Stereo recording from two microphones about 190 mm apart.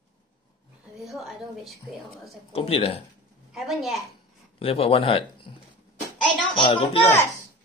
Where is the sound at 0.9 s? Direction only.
Centre (ahead or behind).